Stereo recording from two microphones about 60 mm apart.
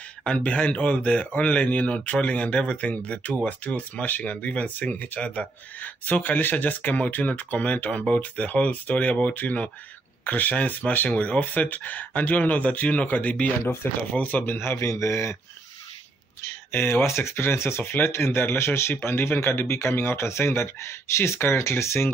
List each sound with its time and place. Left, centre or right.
0.2 s speech: centre; by 14.9 s left
14.9 s speech: left
16.4 s speech: left